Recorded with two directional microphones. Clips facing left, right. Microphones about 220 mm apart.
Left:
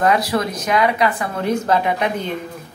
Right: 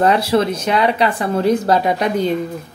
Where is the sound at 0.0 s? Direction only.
30° right (ahead or behind).